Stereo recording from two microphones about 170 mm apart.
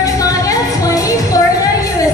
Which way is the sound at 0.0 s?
20° left (ahead or behind).